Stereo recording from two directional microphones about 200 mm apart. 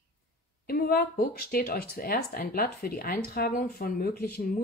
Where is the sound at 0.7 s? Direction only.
50° left (ahead or behind).